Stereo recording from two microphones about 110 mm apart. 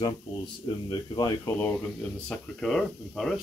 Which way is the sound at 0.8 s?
40° left (ahead or behind).